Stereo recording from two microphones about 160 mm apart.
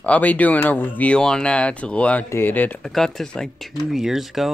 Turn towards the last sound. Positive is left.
turn(degrees=0)  # may be behind; listen again after turning